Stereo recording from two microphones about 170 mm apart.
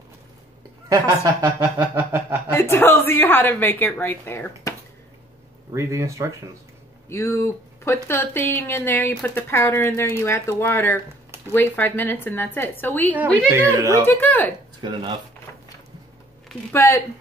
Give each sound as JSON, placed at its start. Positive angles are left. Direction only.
{"t": 0.8, "sound": "speech", "side_deg": -20}
{"t": 1.8, "sound": "a sound", "side_deg": -10}
{"t": 2.5, "sound": "a woman's voice", "side_deg": 15}
{"t": 5.7, "sound": "a sound", "side_deg": -15}
{"t": 7.1, "sound": "a woman's voice", "side_deg": 15}
{"t": 13.5, "sound": "a sound", "side_deg": -15}
{"t": 14.0, "sound": "a woman's voice", "side_deg": 10}
{"t": 14.8, "sound": "speech", "side_deg": -25}
{"t": 16.7, "sound": "a woman's voice", "side_deg": 15}